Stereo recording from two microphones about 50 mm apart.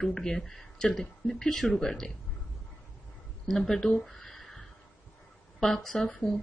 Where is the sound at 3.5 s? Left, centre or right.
Centre.